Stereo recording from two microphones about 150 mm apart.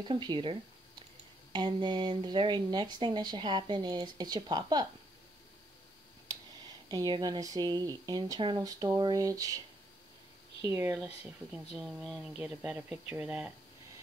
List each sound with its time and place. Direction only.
0.1 s speech: 30° right (ahead or behind)
6.9 s speech: 30° right (ahead or behind)
10.6 s speech: 15° right (ahead or behind)
11.7 s speech: centre (ahead or behind)